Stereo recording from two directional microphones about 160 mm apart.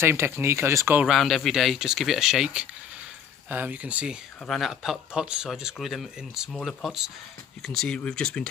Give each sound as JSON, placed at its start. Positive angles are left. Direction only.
{"t": 0.0, "sound": "speech", "side_deg": -15}
{"t": 1.0, "sound": "speech", "side_deg": 0}